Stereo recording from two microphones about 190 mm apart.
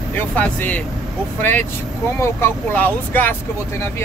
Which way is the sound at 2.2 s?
10° left (ahead or behind).